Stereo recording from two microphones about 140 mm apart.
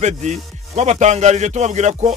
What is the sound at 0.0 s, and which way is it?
Speech, 55° right (ahead or behind).